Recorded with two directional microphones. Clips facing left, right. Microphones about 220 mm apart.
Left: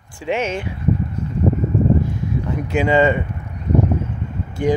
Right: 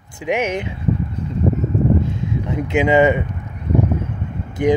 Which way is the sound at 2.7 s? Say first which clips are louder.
Right 2 dB; 20° right (ahead or behind).